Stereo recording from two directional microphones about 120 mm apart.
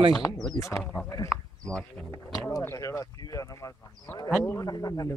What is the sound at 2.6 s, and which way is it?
Speech, 20° left (ahead or behind).